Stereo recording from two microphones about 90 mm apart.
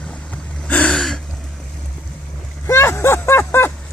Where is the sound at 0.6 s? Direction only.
10° left (ahead or behind).